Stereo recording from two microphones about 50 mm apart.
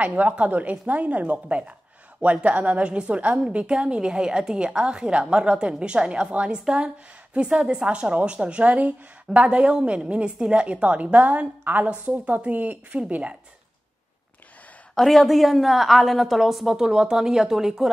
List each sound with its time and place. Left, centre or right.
0.0 s a woman's voice: right
15.0 s a woman's voice: centre